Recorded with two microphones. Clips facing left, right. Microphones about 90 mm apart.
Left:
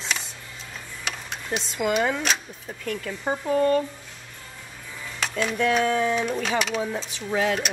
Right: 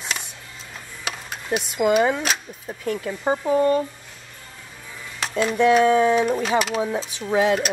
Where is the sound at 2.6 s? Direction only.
25° right (ahead or behind).